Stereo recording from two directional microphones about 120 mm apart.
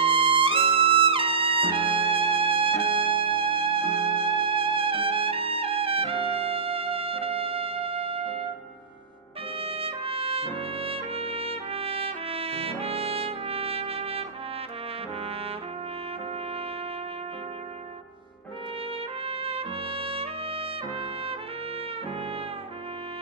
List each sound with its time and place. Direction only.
0.0 s music: 50° right (ahead or behind)
9.6 s trumpet: 50° right (ahead or behind)
19.2 s trumpet: 55° right (ahead or behind)